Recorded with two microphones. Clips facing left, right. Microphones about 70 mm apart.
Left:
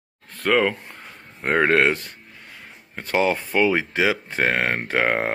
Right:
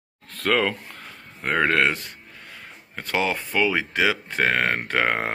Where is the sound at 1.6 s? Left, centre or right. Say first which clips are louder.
Left 2 dB; left.